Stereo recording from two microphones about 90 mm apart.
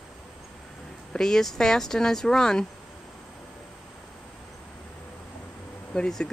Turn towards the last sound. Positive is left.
turn(degrees=5)  # may be behind; listen again after turning